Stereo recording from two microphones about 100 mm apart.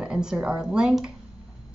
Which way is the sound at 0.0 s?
5° right (ahead or behind).